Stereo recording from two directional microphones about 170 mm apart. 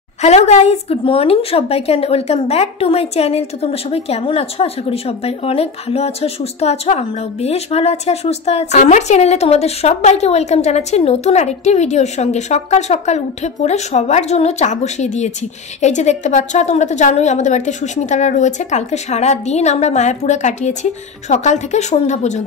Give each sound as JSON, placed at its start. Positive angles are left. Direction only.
{"t": 0.2, "sound": "a woman's voice", "side_deg": 40}